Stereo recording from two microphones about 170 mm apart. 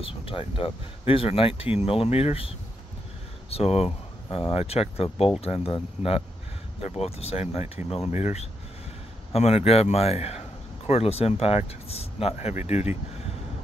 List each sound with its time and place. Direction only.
0.0 s speech: 35° left (ahead or behind)